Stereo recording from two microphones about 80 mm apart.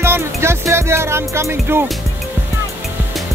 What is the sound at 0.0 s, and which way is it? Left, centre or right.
Music, right.